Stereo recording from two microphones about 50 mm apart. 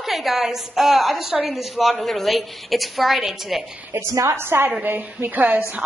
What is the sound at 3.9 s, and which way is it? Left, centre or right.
Speech, right.